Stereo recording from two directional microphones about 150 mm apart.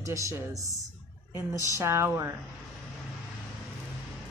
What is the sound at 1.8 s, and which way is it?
Speech, 20° right (ahead or behind).